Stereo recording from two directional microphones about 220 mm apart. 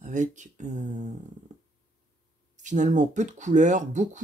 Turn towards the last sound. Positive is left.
turn(degrees=-35)  # may be behind; listen again after turning